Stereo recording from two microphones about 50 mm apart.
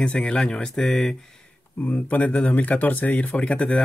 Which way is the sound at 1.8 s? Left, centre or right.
Left.